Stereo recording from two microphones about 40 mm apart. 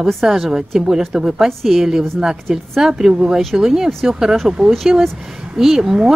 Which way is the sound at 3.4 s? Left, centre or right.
Centre.